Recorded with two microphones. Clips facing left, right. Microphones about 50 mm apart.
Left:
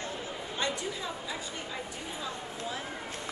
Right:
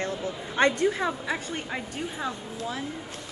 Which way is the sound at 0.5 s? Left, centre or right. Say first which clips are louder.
Right 12 dB; right.